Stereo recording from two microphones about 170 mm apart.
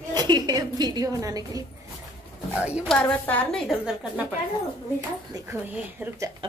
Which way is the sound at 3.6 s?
5° right (ahead or behind).